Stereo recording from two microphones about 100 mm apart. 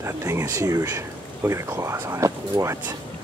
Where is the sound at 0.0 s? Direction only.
30° right (ahead or behind).